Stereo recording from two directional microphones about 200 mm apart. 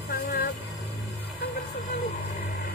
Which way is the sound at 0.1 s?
50° left (ahead or behind).